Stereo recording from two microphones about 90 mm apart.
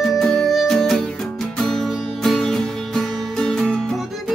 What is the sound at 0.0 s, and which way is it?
Music, 5° left (ahead or behind).